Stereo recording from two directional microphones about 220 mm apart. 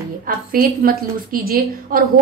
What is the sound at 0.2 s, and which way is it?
A woman's voice, 40° right (ahead or behind).